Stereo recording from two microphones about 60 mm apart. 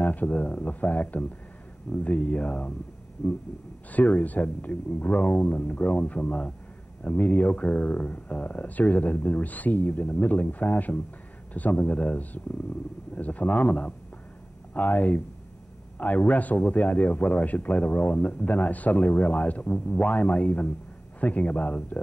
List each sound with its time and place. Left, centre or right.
0.0 s a man's voice: left
3.9 s a man's voice: left